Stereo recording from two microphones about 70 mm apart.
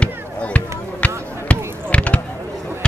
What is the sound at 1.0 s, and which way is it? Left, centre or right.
Basketball bounce, left.